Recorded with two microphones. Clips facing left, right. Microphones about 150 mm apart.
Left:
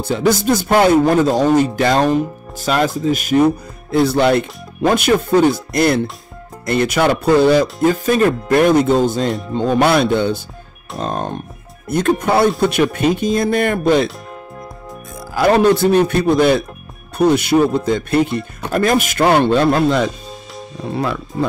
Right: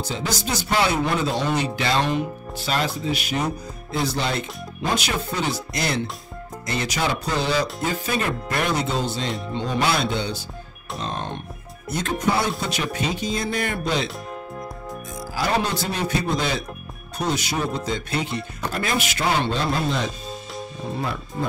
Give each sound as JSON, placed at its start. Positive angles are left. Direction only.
{"t": 0.0, "sound": "speech", "side_deg": 55}
{"t": 11.9, "sound": "speech", "side_deg": 55}
{"t": 15.3, "sound": "speech", "side_deg": 55}
{"t": 20.9, "sound": "speech", "side_deg": 85}